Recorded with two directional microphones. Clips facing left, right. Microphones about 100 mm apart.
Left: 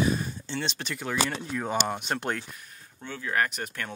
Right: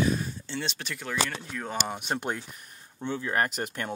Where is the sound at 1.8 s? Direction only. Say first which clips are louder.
Left 1 dB; 10° right (ahead or behind).